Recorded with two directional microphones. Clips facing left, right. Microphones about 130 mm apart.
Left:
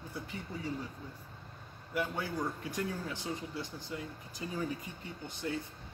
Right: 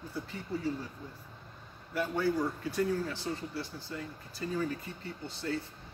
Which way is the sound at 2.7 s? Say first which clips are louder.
Right 6 dB; 15° left (ahead or behind).